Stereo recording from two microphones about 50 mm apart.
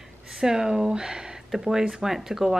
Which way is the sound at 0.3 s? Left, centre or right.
Centre.